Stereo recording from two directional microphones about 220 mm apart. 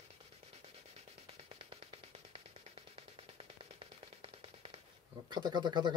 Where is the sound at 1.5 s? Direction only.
25° right (ahead or behind).